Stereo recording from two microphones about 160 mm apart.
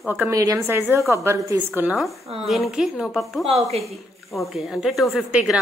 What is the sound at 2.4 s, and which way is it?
A woman's voice, centre (ahead or behind).